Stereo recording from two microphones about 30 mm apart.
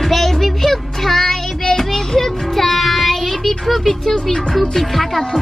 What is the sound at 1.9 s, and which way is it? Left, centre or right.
Child singing, centre.